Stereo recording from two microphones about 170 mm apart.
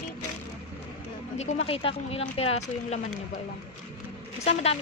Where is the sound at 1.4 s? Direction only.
40° left (ahead or behind).